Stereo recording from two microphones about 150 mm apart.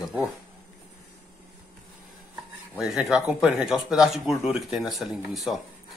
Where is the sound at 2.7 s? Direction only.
5° right (ahead or behind).